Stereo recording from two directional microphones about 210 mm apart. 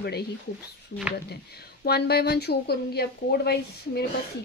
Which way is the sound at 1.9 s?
50° left (ahead or behind).